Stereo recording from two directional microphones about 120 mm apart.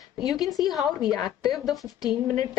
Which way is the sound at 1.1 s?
35° left (ahead or behind).